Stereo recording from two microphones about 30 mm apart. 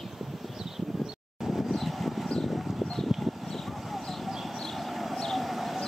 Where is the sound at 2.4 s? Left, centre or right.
Centre.